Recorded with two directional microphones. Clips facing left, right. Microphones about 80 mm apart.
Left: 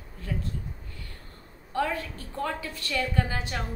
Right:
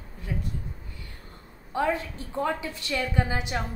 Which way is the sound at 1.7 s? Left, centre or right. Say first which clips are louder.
Right 2 dB; centre.